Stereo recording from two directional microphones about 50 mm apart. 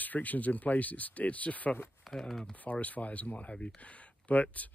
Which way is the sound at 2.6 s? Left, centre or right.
Left.